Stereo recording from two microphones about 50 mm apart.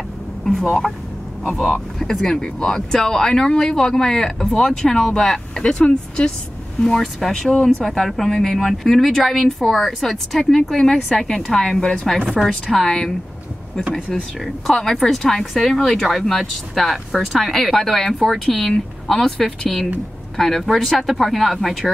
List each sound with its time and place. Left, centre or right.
0.5 s speech: centre
10.4 s speech: centre
12.3 s speech: centre
12.7 s speech: centre
14.9 s speech: centre